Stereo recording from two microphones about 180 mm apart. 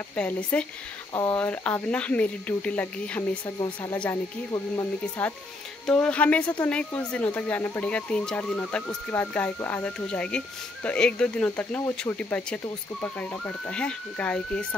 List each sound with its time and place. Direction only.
0.1 s speech: 5° left (ahead or behind)
3.5 s speech: 20° left (ahead or behind)
3.9 s speech: 10° left (ahead or behind)